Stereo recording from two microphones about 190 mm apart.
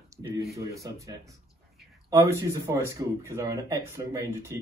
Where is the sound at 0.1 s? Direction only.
15° right (ahead or behind).